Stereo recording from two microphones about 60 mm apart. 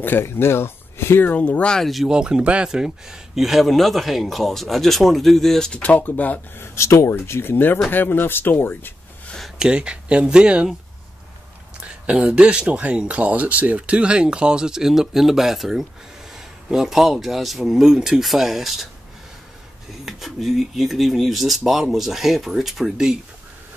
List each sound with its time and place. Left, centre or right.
0.0 s speech: left
1.2 s speech: left
1.7 s speech: centre
2.0 s speech: centre
5.7 s speech: left
6.6 s speech: left
7.2 s speech: left
9.6 s speech: centre
12.1 s speech: centre
20.1 s speech: centre